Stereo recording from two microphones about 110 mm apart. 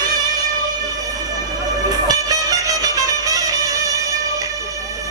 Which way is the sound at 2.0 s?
35° right (ahead or behind).